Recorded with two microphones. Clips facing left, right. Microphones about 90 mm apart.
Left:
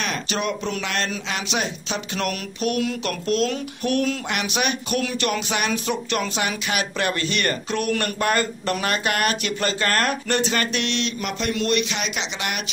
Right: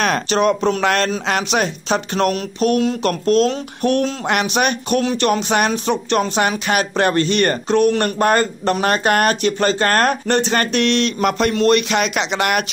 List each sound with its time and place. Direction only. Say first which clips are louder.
0.3 s speech: right 10 dB; 40° right (ahead or behind)
4.3 s speech: right 7 dB; 45° right (ahead or behind)
11.5 s speech: right 6 dB; 40° right (ahead or behind)
11.9 s speech: right 9 dB; 55° right (ahead or behind)